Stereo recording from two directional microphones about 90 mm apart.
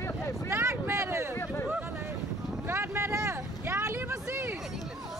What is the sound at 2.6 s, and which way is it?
Vehicle, 25° right (ahead or behind).